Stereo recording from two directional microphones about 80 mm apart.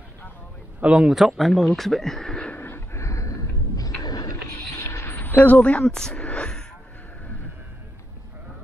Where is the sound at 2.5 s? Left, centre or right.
Left.